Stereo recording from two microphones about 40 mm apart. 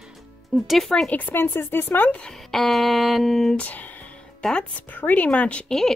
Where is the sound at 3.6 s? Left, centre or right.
Left.